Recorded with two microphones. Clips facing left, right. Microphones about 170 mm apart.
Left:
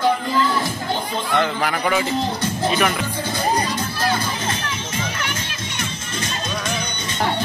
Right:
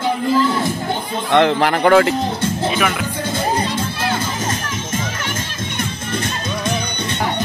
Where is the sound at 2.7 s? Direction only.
5° right (ahead or behind).